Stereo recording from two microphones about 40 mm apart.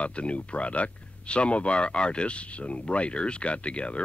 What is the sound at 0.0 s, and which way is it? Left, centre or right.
Speech, left.